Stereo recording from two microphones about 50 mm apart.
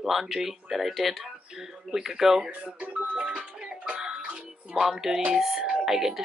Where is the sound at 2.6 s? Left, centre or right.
Centre.